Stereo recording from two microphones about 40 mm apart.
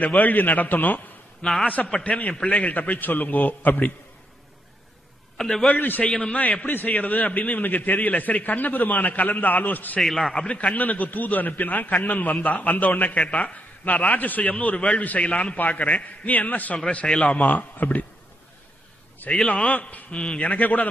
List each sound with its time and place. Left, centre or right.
0.0 s a man's voice: left
1.4 s a man's voice: centre
2.0 s a man's voice: left
5.4 s a man's voice: centre
5.8 s a man's voice: left
6.0 s a man's voice: left
6.3 s a man's voice: left
10.0 s a man's voice: centre
10.3 s a man's voice: left
10.7 s a man's voice: left
15.5 s a man's voice: left
16.9 s a man's voice: left
17.4 s a man's voice: left
19.4 s a man's voice: left